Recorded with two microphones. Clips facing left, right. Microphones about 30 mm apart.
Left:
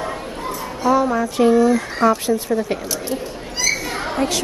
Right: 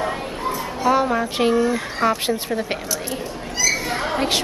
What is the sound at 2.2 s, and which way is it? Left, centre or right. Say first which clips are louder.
Speech: left 3 dB; right.